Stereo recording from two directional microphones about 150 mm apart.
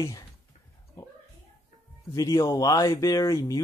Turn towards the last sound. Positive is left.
turn(degrees=20)  # may be behind; listen again after turning